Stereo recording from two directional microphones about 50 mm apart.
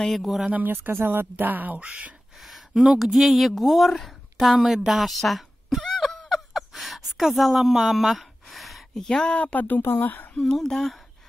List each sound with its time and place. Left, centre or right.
0.0 s speech: centre
0.7 s speech: right
2.3 s a sound: centre
2.7 s a woman's voice: centre
5.9 s a sound: centre
7.7 s speech: centre
9.4 s speech: left
9.8 s speech: left
10.5 s speech: centre